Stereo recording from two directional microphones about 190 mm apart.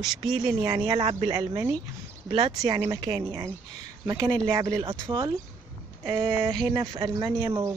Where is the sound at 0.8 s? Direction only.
25° right (ahead or behind).